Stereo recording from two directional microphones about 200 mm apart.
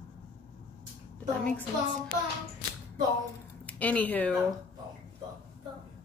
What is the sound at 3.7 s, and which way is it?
Speech, 10° left (ahead or behind).